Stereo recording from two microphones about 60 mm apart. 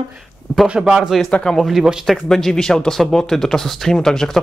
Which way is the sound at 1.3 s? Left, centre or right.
Centre.